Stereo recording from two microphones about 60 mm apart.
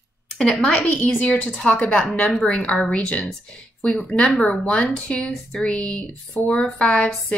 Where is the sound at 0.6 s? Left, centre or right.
Left.